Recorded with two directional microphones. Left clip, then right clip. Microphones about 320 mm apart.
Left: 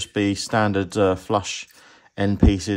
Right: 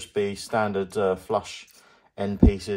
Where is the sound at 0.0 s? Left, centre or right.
Left.